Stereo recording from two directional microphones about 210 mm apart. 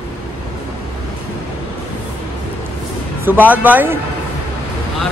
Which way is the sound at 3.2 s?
10° right (ahead or behind).